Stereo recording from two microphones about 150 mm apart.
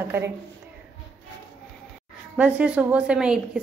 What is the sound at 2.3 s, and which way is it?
A woman's voice, 10° right (ahead or behind).